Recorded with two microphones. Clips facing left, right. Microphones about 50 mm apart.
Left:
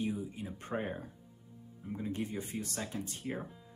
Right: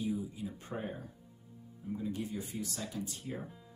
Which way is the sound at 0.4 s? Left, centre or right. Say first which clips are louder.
Left 2 dB; left.